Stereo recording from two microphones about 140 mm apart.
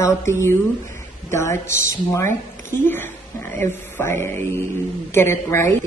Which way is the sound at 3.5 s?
20° left (ahead or behind).